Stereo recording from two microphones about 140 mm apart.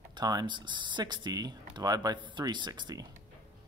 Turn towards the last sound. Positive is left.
turn(degrees=-30)  # may be behind; listen again after turning